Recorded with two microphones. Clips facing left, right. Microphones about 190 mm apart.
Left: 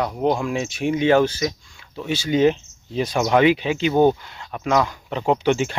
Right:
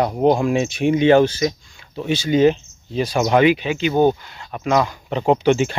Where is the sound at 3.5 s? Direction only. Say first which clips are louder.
Right 1 dB; 30° left (ahead or behind).